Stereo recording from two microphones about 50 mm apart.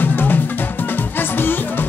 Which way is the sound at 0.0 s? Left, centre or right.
Left.